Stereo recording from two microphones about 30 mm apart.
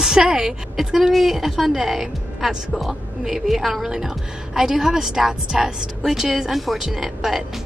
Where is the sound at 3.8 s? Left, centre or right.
Centre.